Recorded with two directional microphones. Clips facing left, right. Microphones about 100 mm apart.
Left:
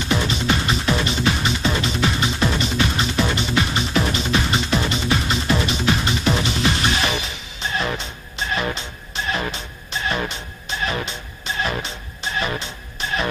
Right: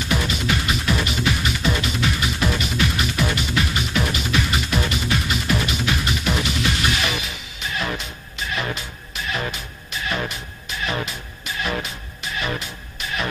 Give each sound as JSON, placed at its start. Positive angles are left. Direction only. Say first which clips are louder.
{"t": 0.3, "sound": "music", "louder": "left 2 dB", "side_deg": 30}